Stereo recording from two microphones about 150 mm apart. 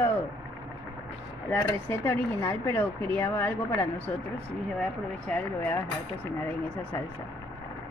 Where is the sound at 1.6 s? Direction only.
15° left (ahead or behind).